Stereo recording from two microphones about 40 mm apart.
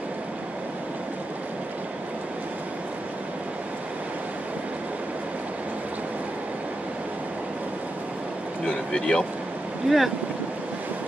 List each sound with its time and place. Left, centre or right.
8.6 s speech: centre
9.8 s speech: centre